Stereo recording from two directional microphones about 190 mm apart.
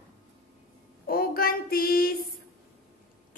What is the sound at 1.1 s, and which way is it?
A woman's voice, 50° left (ahead or behind).